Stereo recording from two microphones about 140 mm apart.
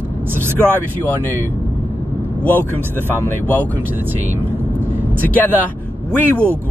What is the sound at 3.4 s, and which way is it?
Speech, 10° left (ahead or behind).